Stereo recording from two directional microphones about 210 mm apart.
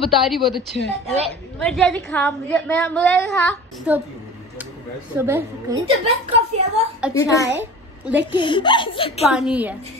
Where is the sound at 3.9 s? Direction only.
5° right (ahead or behind).